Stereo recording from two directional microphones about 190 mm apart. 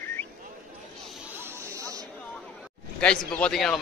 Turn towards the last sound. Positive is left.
turn(degrees=0)  # may be behind; listen again after turning